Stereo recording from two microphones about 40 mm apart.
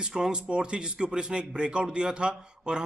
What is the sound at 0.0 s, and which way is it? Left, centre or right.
A man's voice, centre.